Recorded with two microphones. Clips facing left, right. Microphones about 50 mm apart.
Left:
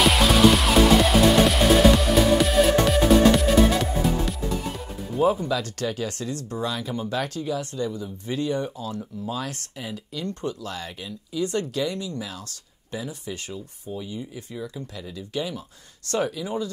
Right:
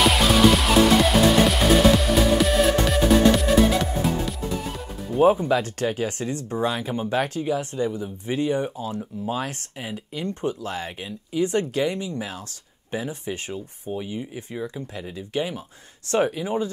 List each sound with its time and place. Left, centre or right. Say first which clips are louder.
0.0 s music: even; centre
5.5 s speech: right 4 dB; right